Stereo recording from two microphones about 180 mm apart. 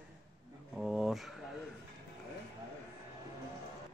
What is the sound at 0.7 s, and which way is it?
Speech, 5° right (ahead or behind).